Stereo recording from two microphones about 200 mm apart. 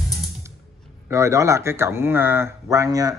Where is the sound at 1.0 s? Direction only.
15° right (ahead or behind).